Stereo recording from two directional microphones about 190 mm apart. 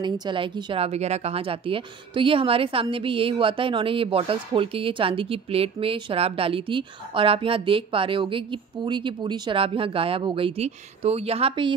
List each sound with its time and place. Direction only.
0.0 s a woman's voice: 25° right (ahead or behind)